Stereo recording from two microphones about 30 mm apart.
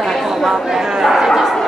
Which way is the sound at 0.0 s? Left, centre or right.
Centre.